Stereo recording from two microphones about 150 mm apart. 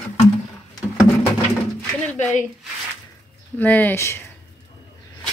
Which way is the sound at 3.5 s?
10° left (ahead or behind).